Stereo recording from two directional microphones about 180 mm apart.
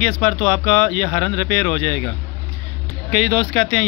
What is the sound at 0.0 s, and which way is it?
Speech, 5° left (ahead or behind).